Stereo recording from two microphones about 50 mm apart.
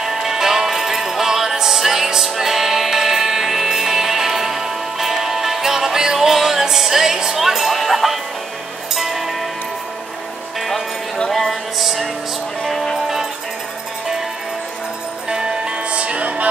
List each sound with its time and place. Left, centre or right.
0.0 s music: centre
11.2 s music: centre
15.2 s music: centre